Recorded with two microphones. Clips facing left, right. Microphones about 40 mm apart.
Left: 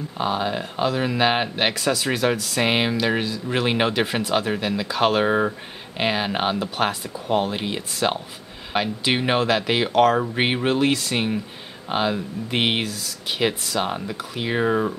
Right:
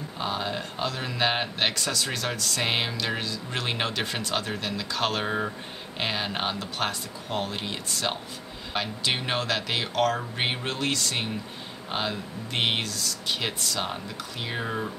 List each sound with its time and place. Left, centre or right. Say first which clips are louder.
0.2 s speech: left 6 dB; centre